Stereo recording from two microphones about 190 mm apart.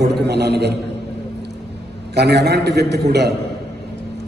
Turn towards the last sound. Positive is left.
turn(degrees=-60)  # may be behind; listen again after turning